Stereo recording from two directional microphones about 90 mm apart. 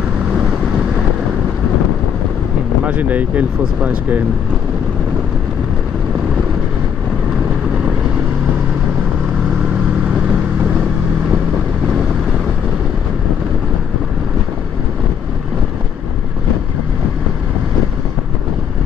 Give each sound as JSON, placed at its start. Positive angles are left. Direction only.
{"t": 2.8, "sound": "speech", "side_deg": -15}